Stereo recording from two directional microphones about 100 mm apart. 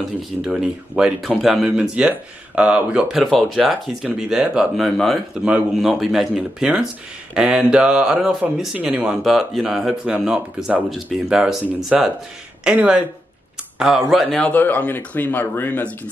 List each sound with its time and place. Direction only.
0.6 s speech: 5° right (ahead or behind)
5.3 s speech: 10° right (ahead or behind)
8.7 s speech: 15° right (ahead or behind)
14.4 s speech: 20° left (ahead or behind)